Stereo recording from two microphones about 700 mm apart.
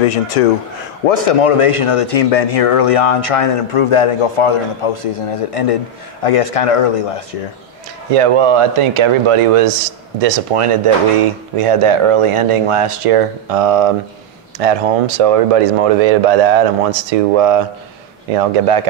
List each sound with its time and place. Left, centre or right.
0.0 s speech: left
1.0 s speech: left
8.1 s speech: right